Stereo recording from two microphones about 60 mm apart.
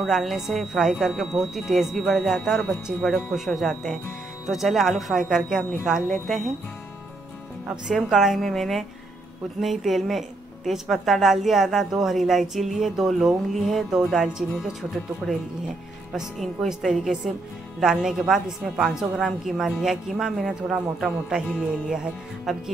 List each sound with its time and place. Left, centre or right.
0.0 s a woman's voice: centre
7.9 s a woman's voice: centre